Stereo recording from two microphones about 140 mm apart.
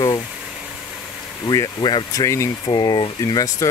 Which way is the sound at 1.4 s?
30° left (ahead or behind).